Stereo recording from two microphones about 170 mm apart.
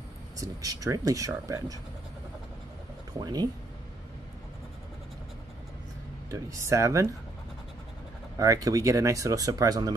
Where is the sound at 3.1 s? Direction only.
20° right (ahead or behind).